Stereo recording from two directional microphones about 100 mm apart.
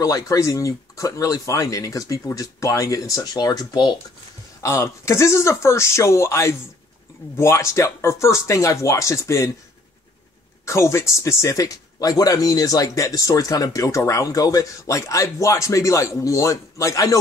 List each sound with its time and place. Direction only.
0.0 s speech: 35° left (ahead or behind)
4.6 s speech: 30° left (ahead or behind)
10.6 s speech: 30° left (ahead or behind)